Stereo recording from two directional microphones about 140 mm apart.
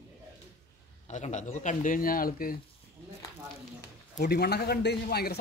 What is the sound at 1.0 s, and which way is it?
Speech, 55° left (ahead or behind).